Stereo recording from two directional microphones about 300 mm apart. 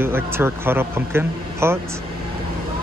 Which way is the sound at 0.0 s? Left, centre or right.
Centre.